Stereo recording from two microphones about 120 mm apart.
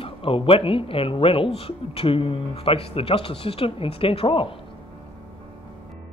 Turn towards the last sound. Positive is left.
turn(degrees=50)  # may be behind; listen again after turning